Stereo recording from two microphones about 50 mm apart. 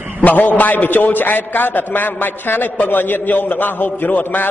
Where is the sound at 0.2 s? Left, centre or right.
Left.